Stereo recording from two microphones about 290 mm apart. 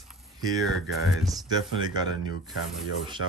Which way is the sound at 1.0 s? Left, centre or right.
Centre.